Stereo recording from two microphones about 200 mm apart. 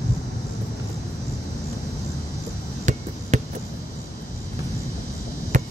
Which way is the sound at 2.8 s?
35° right (ahead or behind).